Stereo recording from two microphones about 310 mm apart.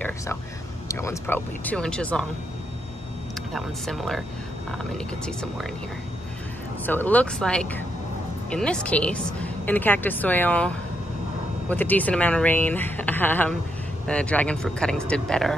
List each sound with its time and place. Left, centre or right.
0.8 s speech: centre
3.5 s speech: centre
6.9 s speech: centre
11.7 s speech: centre